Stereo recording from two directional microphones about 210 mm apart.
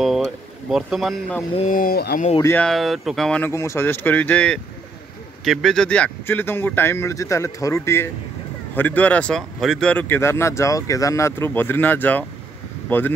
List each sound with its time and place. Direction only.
0.0 s speech: centre (ahead or behind)
1.7 s speech: 45° left (ahead or behind)
2.4 s speech: 5° left (ahead or behind)